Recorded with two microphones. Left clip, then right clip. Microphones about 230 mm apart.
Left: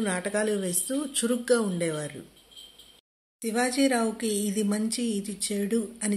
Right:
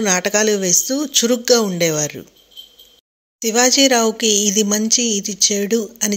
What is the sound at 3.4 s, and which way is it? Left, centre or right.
Speech, right.